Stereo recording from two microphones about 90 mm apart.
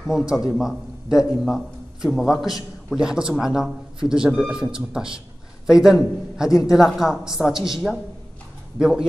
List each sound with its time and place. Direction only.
0.1 s a woman's voice: 5° right (ahead or behind)